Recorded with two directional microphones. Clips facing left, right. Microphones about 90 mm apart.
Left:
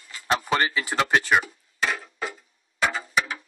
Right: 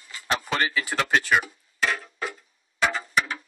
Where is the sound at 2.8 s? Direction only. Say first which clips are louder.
Even; 5° left (ahead or behind).